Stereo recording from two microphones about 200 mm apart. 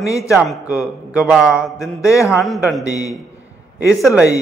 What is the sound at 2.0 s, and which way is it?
Speech, 15° left (ahead or behind).